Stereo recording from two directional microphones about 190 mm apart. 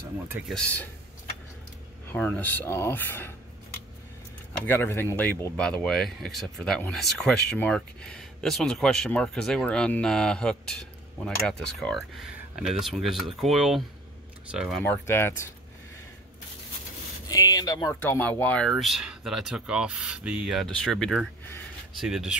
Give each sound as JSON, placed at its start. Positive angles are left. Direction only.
{"t": 0.5, "sound": "speech", "side_deg": 5}
{"t": 2.1, "sound": "speech", "side_deg": 10}
{"t": 4.6, "sound": "speech", "side_deg": 10}
{"t": 14.8, "sound": "speech", "side_deg": 10}
{"t": 17.3, "sound": "speech", "side_deg": 20}
{"t": 18.0, "sound": "speech", "side_deg": 10}